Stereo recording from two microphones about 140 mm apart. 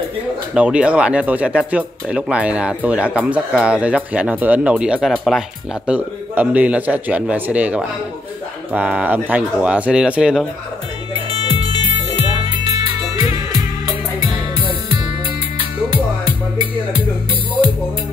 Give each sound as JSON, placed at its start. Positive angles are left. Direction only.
{"t": 0.6, "sound": "speech", "side_deg": -10}
{"t": 5.9, "sound": "speech", "side_deg": -10}
{"t": 12.2, "sound": "music", "side_deg": -40}